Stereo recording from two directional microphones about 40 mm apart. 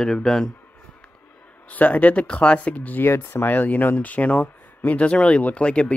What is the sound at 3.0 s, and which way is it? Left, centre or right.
Speech, left.